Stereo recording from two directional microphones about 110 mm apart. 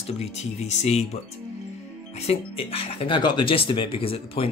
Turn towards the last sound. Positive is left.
turn(degrees=60)  # may be behind; listen again after turning